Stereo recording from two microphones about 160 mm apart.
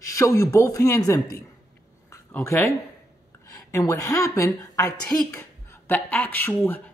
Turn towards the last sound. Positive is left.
turn(degrees=10)  # may be behind; listen again after turning